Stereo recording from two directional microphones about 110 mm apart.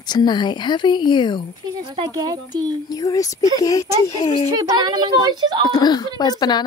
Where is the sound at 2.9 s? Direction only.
30° left (ahead or behind).